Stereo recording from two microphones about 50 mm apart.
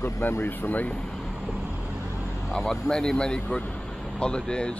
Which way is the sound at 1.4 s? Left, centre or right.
Right.